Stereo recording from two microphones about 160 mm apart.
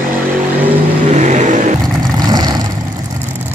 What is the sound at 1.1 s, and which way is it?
Vehicle, 45° right (ahead or behind).